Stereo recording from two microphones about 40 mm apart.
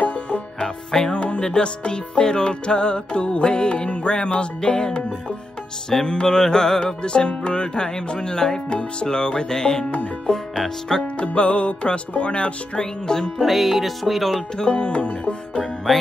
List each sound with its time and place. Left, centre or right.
0.0 s music: left
0.6 s music: centre
1.1 s music: left
6.0 s music: left
11.1 s music: left
13.4 s music: centre
14.6 s music: left
15.9 s music: centre